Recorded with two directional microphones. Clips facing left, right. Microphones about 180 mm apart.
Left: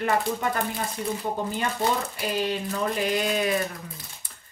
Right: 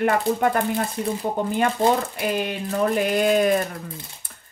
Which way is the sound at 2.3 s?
55° right (ahead or behind).